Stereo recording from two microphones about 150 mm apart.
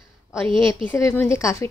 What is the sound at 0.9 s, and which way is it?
Speech, 15° left (ahead or behind).